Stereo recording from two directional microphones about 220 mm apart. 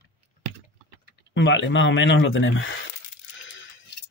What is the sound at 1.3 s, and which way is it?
Speech, 55° left (ahead or behind).